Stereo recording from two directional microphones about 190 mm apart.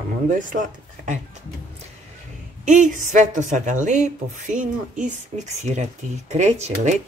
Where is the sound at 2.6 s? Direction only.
45° right (ahead or behind).